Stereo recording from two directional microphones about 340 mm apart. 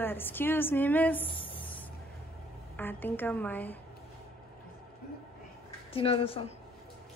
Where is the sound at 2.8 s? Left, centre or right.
Centre.